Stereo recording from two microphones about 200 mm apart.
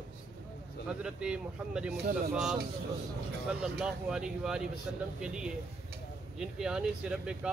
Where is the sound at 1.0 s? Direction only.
5° right (ahead or behind).